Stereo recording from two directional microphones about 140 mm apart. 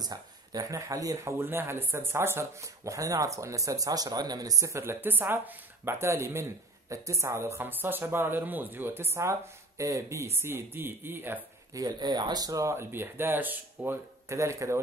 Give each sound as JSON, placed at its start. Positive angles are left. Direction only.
{"t": 0.0, "sound": "a woman's voice", "side_deg": -30}
{"t": 11.8, "sound": "speech", "side_deg": -30}